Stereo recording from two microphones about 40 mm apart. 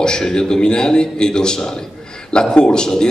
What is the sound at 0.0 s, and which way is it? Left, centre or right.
A man's voice, centre.